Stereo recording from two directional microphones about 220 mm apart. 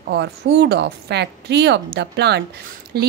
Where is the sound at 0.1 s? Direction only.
50° right (ahead or behind).